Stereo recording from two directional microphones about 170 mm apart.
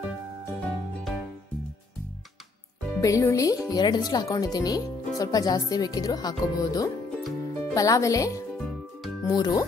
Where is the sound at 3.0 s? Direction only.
20° left (ahead or behind).